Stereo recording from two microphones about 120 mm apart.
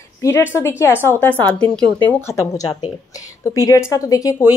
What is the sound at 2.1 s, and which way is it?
A woman's voice, 25° left (ahead or behind).